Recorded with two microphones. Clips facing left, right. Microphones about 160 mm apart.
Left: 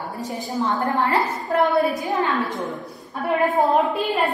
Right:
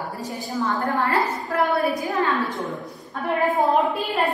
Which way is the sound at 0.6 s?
20° left (ahead or behind).